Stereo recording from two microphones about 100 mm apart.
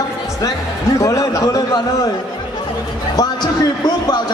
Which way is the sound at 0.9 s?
35° left (ahead or behind).